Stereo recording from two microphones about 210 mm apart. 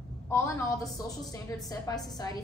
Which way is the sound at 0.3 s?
15° left (ahead or behind).